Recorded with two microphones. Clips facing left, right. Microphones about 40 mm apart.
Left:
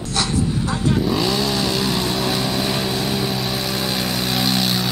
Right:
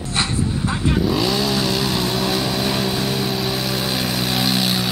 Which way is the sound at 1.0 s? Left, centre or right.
Centre.